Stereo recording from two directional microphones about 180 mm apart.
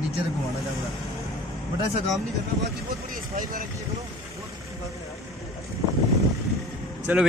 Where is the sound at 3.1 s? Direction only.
50° right (ahead or behind).